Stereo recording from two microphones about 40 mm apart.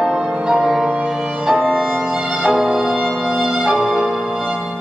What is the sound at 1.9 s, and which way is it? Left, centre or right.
Violin, centre.